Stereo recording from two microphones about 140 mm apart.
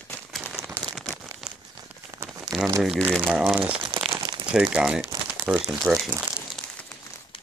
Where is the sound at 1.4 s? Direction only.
5° right (ahead or behind).